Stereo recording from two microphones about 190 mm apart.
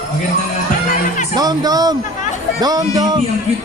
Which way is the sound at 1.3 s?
20° right (ahead or behind).